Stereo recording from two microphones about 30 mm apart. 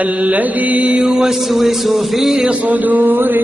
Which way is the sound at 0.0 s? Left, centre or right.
Right.